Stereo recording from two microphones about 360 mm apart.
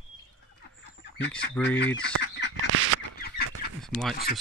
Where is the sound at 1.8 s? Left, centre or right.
Left.